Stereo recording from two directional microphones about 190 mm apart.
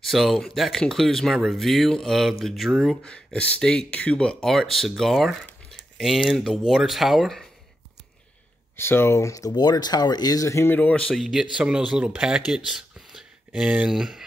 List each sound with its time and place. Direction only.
0.0 s speech: centre (ahead or behind)
8.7 s speech: 10° left (ahead or behind)